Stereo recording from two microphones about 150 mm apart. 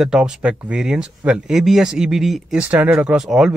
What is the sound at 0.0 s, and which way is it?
Speech, 5° right (ahead or behind).